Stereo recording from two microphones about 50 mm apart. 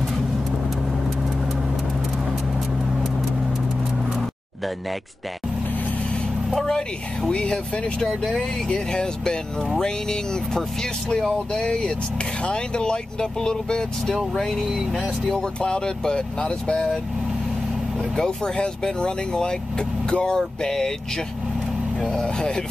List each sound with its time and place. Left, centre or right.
6.5 s speech: centre
12.4 s speech: centre
15.6 s speech: centre
18.1 s speech: centre
22.2 s speech: centre